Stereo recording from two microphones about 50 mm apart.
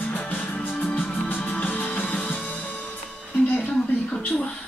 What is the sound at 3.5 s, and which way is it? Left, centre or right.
Music, left.